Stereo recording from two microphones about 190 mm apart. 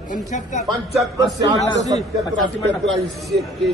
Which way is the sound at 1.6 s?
35° left (ahead or behind).